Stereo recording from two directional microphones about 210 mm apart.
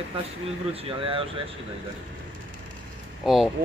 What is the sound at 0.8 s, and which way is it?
Speech, 25° right (ahead or behind).